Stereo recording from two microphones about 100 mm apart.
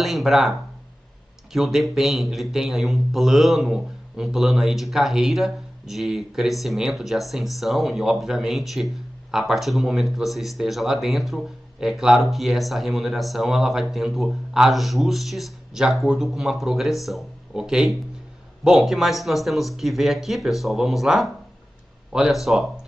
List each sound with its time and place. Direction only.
0.0 s speech: centre (ahead or behind)